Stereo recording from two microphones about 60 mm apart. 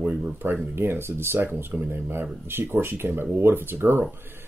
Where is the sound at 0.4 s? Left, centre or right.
Right.